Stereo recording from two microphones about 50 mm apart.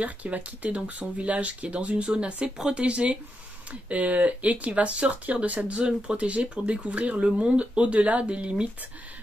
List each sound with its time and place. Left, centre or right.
0.0 s speech: right